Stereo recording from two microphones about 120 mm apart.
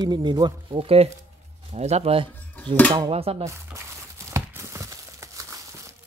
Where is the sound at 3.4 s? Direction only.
25° right (ahead or behind).